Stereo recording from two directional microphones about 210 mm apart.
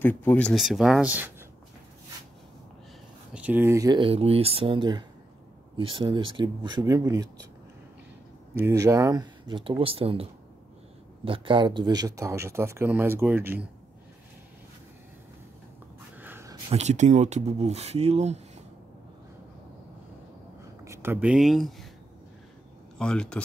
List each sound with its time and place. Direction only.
0.0 s speech: 10° left (ahead or behind); by 1.3 s 5° right (ahead or behind)
3.3 s speech: 10° right (ahead or behind)
8.5 s speech: 15° right (ahead or behind)
11.2 s speech: 25° right (ahead or behind)
16.2 s a sound: 10° right (ahead or behind)
16.7 s speech: 35° right (ahead or behind)
20.8 s speech: 10° right (ahead or behind)
22.9 s speech: 5° left (ahead or behind)